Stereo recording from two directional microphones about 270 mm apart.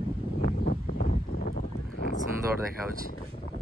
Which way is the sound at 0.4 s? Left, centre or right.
Left.